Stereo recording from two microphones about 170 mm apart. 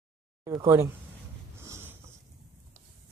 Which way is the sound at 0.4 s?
20° right (ahead or behind).